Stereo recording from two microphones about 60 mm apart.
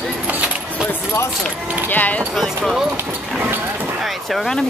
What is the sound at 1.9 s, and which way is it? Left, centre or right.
Speech, left.